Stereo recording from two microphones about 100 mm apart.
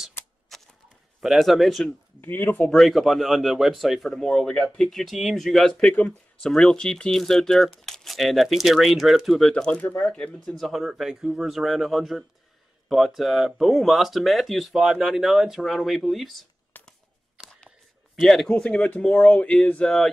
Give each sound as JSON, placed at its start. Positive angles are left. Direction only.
{"t": 0.5, "sound": "a sound", "side_deg": 0}
{"t": 1.2, "sound": "speech", "side_deg": 0}
{"t": 2.2, "sound": "speech", "side_deg": 20}
{"t": 2.6, "sound": "speech", "side_deg": 5}
{"t": 16.7, "sound": "a sound", "side_deg": 20}
{"t": 17.4, "sound": "camera", "side_deg": 5}
{"t": 18.2, "sound": "speech", "side_deg": 5}